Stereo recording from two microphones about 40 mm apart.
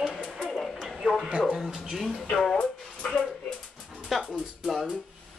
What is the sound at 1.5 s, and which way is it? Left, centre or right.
Speech, centre.